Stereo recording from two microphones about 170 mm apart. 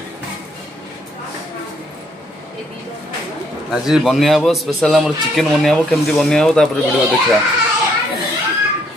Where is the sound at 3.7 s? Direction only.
Centre (ahead or behind).